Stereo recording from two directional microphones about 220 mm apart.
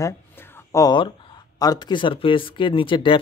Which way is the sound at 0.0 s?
15° left (ahead or behind).